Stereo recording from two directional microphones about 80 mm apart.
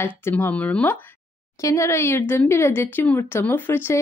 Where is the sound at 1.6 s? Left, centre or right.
Left.